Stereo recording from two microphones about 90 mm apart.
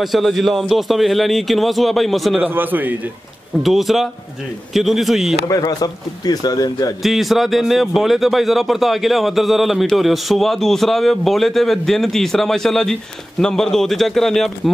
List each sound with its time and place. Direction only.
0.0 s speech: centre (ahead or behind)
2.4 s a man's voice: 20° right (ahead or behind)
3.6 s speech: centre (ahead or behind)
5.5 s a man's voice: 45° left (ahead or behind)
7.0 s speech: centre (ahead or behind)